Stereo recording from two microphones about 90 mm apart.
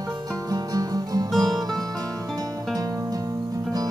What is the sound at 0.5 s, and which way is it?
Music, 45° right (ahead or behind).